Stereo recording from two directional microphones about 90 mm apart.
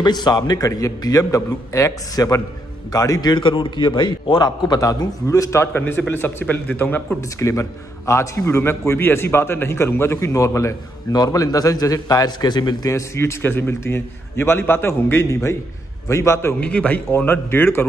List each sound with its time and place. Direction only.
0.0 s a man's voice: 50° left (ahead or behind); by 5.7 s 35° left (ahead or behind)
5.7 s a man's voice: 25° left (ahead or behind)
7.2 s a man's voice: 35° left (ahead or behind); by 12.9 s 50° left (ahead or behind)
12.9 s a man's voice: 30° left (ahead or behind)
16.5 s a man's voice: 15° left (ahead or behind)